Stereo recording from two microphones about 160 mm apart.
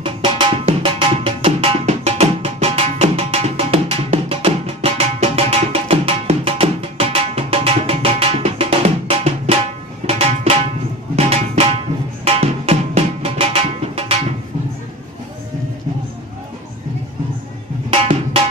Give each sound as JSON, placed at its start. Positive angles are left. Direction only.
{"t": 0.0, "sound": "tabla", "side_deg": -30}
{"t": 11.1, "sound": "music", "side_deg": -40}
{"t": 17.8, "sound": "drum", "side_deg": -35}